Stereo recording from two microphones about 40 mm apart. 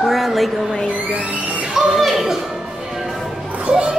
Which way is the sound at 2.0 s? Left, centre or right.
Centre.